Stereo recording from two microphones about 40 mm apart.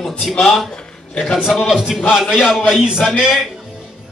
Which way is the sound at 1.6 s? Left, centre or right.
Centre.